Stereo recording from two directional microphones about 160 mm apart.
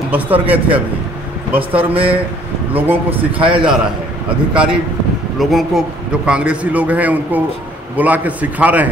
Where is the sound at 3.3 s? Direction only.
30° right (ahead or behind).